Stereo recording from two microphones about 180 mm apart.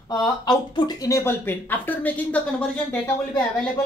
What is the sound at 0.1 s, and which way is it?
Speech, 25° left (ahead or behind).